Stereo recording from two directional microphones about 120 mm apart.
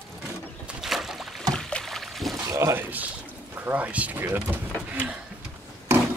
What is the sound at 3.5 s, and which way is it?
Speech, 15° right (ahead or behind).